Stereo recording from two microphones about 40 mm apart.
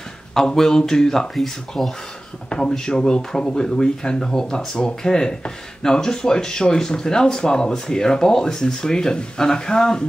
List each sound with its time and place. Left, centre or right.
0.6 s speech: centre
1.3 s speech: centre
2.7 s speech: centre